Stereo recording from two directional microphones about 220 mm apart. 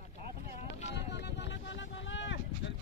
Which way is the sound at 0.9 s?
50° left (ahead or behind).